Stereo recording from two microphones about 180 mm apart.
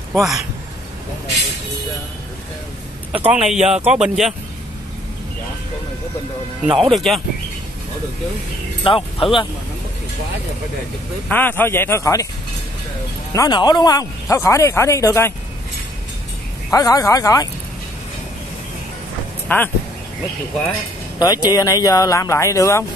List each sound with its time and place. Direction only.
0.1 s speech: centre (ahead or behind)
3.1 s a man's voice: 10° right (ahead or behind)
6.6 s speech: centre (ahead or behind)
8.8 s speech: 30° left (ahead or behind)
11.2 s speech: 10° left (ahead or behind)
13.3 s speech: 20° left (ahead or behind)
16.7 s speech: 20° left (ahead or behind)
19.4 s speech: 10° left (ahead or behind)
21.2 s speech: 20° left (ahead or behind)